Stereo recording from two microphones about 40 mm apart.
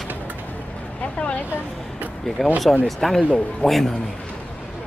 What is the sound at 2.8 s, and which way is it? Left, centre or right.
Speech, centre.